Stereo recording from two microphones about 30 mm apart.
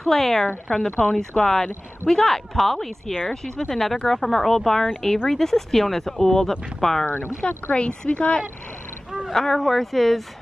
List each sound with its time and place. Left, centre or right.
0.0 s speech: centre
0.7 s speech: left
1.4 s speech: centre
2.5 s speech: centre
3.3 s speech: centre
3.6 s speech: centre
7.7 s speech: left
9.3 s speech: centre